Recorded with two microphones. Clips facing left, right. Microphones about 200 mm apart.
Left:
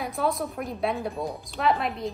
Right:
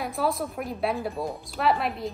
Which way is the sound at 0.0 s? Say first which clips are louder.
Even; centre (ahead or behind).